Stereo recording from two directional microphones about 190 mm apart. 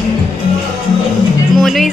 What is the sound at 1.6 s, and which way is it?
Music, centre (ahead or behind).